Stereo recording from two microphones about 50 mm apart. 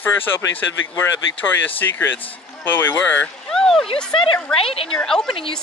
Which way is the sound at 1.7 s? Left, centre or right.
Left.